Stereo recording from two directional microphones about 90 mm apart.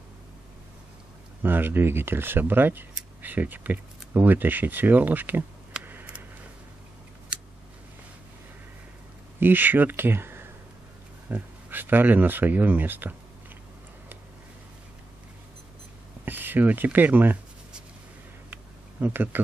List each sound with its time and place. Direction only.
1.4 s speech: 20° right (ahead or behind)
5.9 s a sound: 20° right (ahead or behind)
7.3 s scissors: 10° right (ahead or behind)
9.4 s speech: 20° right (ahead or behind)
16.3 s speech: 20° right (ahead or behind)
18.5 s a sound: 20° right (ahead or behind)